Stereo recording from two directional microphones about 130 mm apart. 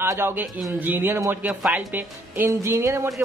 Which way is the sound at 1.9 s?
20° right (ahead or behind).